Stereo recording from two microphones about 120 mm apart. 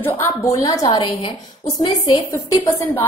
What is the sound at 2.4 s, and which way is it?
Speech, 25° left (ahead or behind).